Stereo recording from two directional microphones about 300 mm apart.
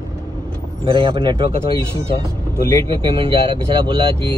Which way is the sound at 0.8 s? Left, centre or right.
Centre.